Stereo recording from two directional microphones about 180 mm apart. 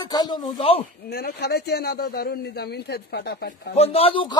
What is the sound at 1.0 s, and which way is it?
A man's voice, 60° left (ahead or behind).